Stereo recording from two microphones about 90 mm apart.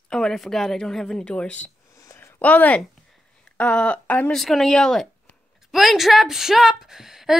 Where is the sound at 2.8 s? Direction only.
5° left (ahead or behind).